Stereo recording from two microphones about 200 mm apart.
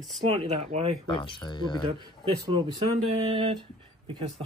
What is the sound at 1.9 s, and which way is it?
Speech, 25° right (ahead or behind).